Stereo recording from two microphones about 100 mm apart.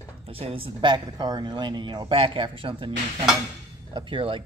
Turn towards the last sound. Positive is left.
turn(degrees=-60)  # may be behind; listen again after turning